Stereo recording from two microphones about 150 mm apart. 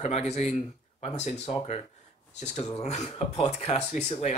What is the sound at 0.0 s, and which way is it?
Speech, 45° left (ahead or behind).